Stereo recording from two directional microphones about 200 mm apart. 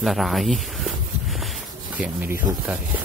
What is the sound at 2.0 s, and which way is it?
Speech, 5° right (ahead or behind).